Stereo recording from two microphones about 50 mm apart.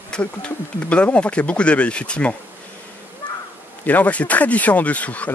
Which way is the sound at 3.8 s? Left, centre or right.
Left.